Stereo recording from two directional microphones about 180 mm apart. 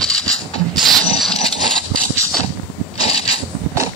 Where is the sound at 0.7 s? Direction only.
Centre (ahead or behind).